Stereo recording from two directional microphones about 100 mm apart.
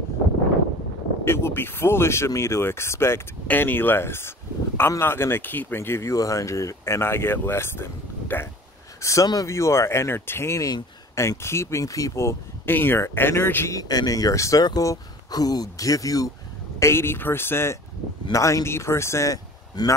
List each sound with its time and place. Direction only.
1.2 s speech: 25° left (ahead or behind)
9.0 s speech: 35° left (ahead or behind)
13.7 s speech: 40° left (ahead or behind)
16.8 s speech: 25° left (ahead or behind); by 19.9 s 40° left (ahead or behind)